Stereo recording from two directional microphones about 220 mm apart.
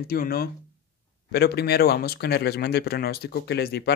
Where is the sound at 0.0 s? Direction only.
45° left (ahead or behind).